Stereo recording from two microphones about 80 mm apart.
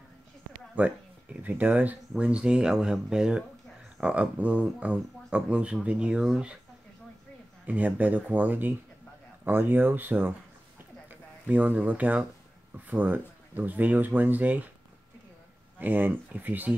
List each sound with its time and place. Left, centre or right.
0.7 s speech: centre
7.6 s speech: centre
15.8 s speech: right